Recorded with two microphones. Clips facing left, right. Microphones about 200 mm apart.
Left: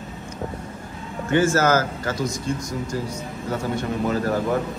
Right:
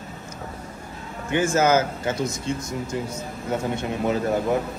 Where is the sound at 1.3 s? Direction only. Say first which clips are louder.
Left 1 dB; 20° right (ahead or behind).